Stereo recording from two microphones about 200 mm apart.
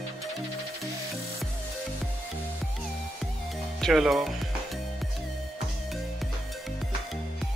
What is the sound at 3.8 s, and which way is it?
Speech, centre (ahead or behind).